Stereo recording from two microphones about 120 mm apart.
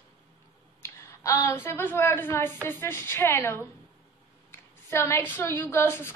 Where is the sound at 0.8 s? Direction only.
25° left (ahead or behind).